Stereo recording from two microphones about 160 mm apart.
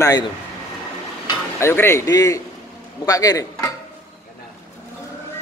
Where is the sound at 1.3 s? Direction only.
15° left (ahead or behind).